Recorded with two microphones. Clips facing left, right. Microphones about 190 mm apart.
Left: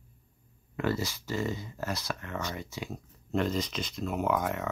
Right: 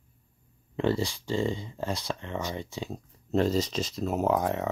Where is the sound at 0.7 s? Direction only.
30° right (ahead or behind).